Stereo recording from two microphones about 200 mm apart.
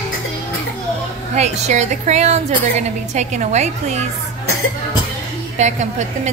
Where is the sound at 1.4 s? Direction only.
35° right (ahead or behind).